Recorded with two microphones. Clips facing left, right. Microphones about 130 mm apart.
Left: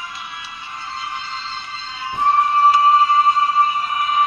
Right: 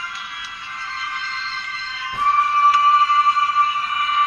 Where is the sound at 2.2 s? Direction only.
20° left (ahead or behind).